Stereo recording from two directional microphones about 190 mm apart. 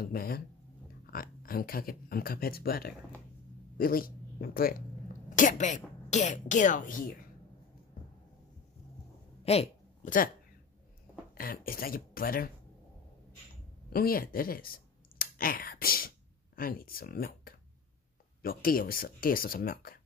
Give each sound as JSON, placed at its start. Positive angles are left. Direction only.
{"t": 0.0, "sound": "a woman's voice", "side_deg": 50}
{"t": 9.4, "sound": "a sound", "side_deg": 30}
{"t": 11.3, "sound": "speech", "side_deg": 50}
{"t": 13.9, "sound": "speech", "side_deg": 50}